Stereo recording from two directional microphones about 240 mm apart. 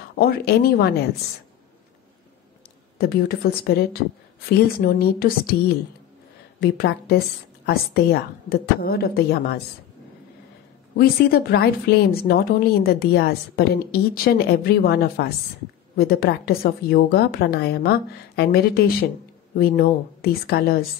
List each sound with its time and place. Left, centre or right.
0.2 s a woman's voice: left
3.0 s a woman's voice: left
6.6 s a woman's voice: left
11.0 s a woman's voice: left